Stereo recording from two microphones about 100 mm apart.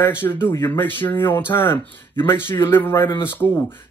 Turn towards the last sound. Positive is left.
turn(degrees=25)  # may be behind; listen again after turning